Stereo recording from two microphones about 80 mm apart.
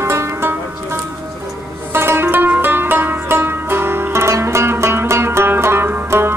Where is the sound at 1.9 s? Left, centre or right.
Right.